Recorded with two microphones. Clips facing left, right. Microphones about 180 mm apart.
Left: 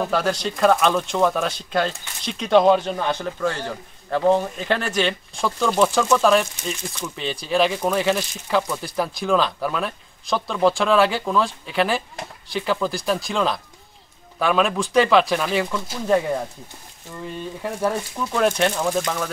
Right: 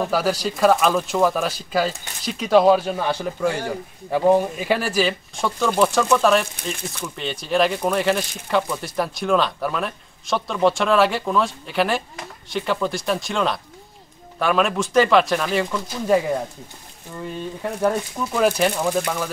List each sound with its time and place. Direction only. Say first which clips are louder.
0.0 s speech: right 1 dB; 5° right (ahead or behind)
6.5 s speech: even; 55° right (ahead or behind)
7.2 s speech: even; centre (ahead or behind)
18.1 s speech: right 1 dB; 5° right (ahead or behind)